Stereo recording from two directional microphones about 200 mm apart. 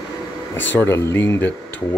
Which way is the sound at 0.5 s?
10° left (ahead or behind).